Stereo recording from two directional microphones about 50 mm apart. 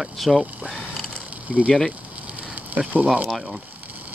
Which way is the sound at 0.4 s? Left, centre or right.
Right.